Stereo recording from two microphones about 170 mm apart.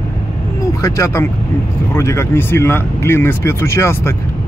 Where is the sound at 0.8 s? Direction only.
15° left (ahead or behind).